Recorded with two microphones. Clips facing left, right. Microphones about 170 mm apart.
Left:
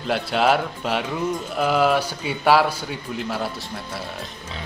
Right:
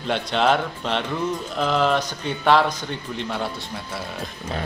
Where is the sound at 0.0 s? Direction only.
5° left (ahead or behind).